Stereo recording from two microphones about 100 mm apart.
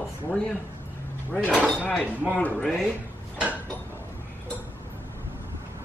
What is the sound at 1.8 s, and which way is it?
Speech, 15° left (ahead or behind).